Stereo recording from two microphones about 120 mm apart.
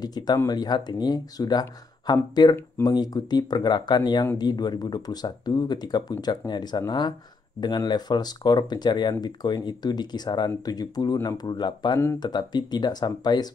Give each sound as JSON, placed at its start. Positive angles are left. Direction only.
{"t": 0.0, "sound": "speech", "side_deg": 35}